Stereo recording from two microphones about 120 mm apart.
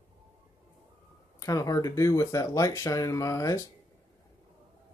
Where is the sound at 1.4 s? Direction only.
30° left (ahead or behind).